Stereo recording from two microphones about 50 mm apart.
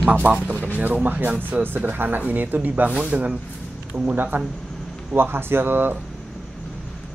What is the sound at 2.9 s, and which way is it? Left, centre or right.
Speech, right.